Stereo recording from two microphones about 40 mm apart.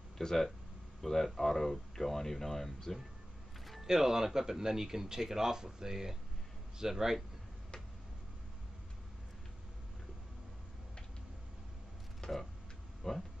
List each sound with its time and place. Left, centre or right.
0.2 s speech: centre
3.8 s speech: centre
12.2 s a sound: left
13.0 s speech: centre